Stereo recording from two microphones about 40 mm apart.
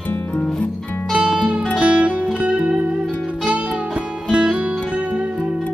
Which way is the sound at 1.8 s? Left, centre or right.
Right.